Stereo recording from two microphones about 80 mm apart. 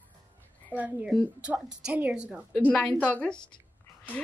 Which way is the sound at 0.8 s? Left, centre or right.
Right.